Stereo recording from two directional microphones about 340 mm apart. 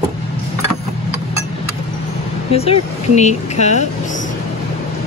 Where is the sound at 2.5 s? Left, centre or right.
Centre.